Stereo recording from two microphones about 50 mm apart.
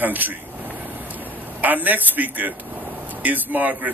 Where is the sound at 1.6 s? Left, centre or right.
Right.